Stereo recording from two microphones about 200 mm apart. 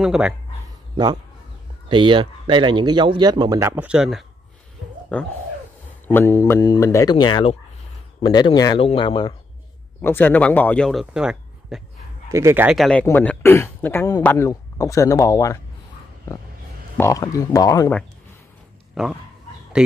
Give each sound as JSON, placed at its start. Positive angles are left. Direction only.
{"t": 0.0, "sound": "speech", "side_deg": -5}
{"t": 1.9, "sound": "a man's voice", "side_deg": -25}
{"t": 10.0, "sound": "a man's voice", "side_deg": 10}
{"t": 12.3, "sound": "a man's voice", "side_deg": -15}
{"t": 16.9, "sound": "a man's voice", "side_deg": 15}
{"t": 19.0, "sound": "speech", "side_deg": 0}